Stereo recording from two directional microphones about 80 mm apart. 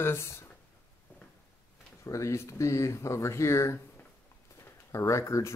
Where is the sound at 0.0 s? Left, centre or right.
Left.